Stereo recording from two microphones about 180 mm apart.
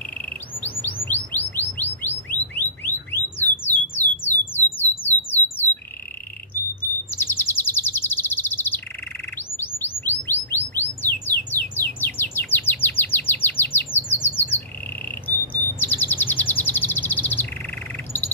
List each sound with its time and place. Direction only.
0.7 s chirp: 10° left (ahead or behind)
1.0 s bird: 10° left (ahead or behind)
4.0 s a sound: 60° right (ahead or behind)
4.6 s a sound: 10° left (ahead or behind)
7.2 s bird: 10° left (ahead or behind)
9.8 s chirp: 10° left (ahead or behind)
10.5 s bird: 10° left (ahead or behind)
14.2 s squawk: 10° left (ahead or behind)
15.2 s chirp: 10° left (ahead or behind)